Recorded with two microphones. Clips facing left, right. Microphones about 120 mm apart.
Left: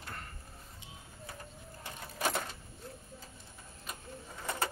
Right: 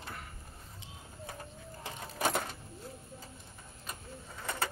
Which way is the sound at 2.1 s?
20° right (ahead or behind).